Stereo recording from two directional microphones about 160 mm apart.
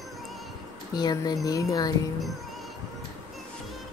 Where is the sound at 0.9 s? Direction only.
25° left (ahead or behind).